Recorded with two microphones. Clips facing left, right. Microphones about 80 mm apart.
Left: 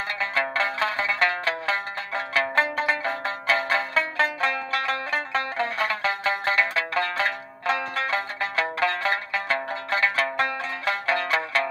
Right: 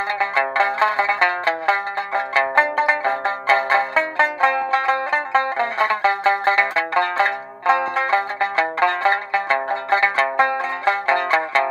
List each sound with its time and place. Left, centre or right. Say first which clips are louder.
0.2 s music: right 6 dB; right